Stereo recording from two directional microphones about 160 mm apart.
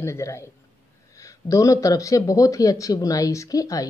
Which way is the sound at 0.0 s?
15° left (ahead or behind).